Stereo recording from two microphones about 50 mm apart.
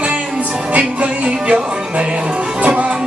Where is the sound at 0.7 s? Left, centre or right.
Right.